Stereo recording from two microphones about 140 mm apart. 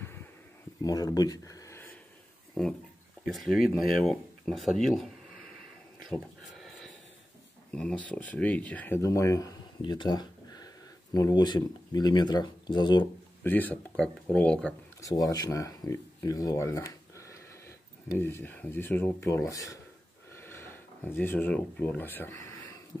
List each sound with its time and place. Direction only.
0.8 s speech: 25° left (ahead or behind)
3.3 s speech: centre (ahead or behind)
6.1 s a sound: centre (ahead or behind)
7.7 s speech: 5° left (ahead or behind); by 9.6 s 25° left (ahead or behind)
9.8 s a sound: 35° left (ahead or behind)
11.1 s speech: 25° left (ahead or behind)
13.4 s speech: 15° left (ahead or behind)
15.0 s speech: 25° left (ahead or behind)
20.3 s a sound: 15° left (ahead or behind)